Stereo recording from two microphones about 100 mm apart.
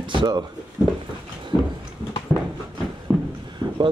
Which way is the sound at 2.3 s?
15° right (ahead or behind).